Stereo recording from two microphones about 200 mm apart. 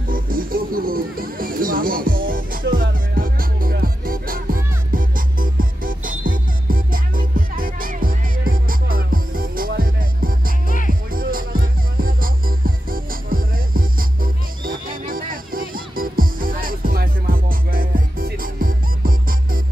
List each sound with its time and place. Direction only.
0.1 s music: 45° right (ahead or behind)